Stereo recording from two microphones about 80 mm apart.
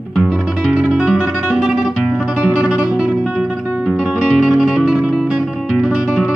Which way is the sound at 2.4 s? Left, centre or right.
Centre.